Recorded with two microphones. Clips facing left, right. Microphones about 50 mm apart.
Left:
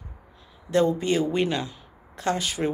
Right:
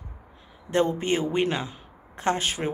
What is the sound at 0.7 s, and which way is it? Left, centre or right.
Speech, right.